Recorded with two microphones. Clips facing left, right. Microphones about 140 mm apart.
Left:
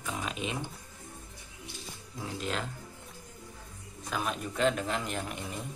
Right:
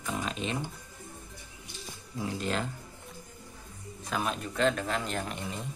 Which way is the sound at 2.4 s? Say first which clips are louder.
Right 2 dB; centre (ahead or behind).